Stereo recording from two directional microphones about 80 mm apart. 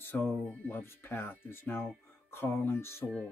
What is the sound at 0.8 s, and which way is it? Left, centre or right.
Speech, left.